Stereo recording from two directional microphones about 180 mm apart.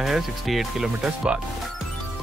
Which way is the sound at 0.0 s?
Centre (ahead or behind).